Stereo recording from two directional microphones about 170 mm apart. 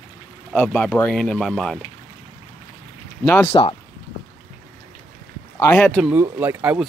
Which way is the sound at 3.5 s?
30° left (ahead or behind).